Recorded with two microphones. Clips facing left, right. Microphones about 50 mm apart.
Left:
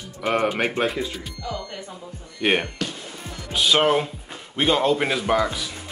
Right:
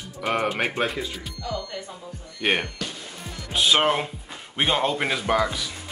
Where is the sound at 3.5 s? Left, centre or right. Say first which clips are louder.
Left 2 dB; centre.